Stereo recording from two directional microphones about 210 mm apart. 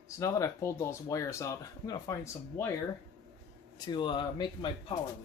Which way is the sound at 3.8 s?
20° left (ahead or behind).